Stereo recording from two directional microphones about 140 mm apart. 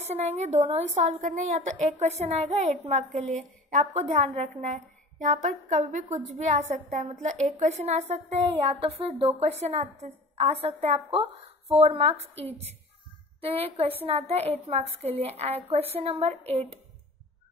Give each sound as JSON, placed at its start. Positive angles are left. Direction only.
{"t": 0.0, "sound": "a woman's voice", "side_deg": -50}
{"t": 3.1, "sound": "a woman's voice", "side_deg": 0}
{"t": 3.8, "sound": "a woman's voice", "side_deg": -50}